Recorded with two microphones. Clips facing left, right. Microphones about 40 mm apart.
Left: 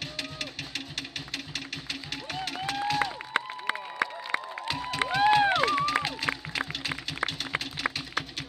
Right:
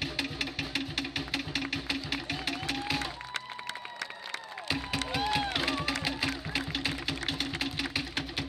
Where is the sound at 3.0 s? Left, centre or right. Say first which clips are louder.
Left 8 dB; left.